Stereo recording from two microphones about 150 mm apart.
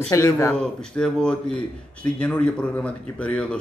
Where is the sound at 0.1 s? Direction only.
20° left (ahead or behind).